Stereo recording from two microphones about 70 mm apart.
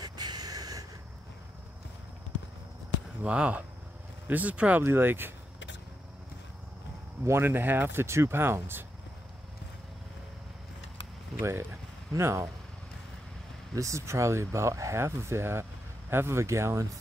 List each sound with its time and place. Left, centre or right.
0.0 s a sound: right
3.3 s speech: centre
4.8 s speech: right
7.2 s speech: right
11.3 s speech: right
13.7 s speech: right